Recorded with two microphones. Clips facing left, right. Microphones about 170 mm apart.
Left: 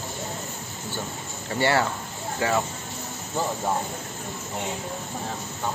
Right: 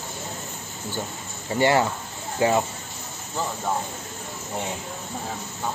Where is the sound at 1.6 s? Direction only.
15° right (ahead or behind).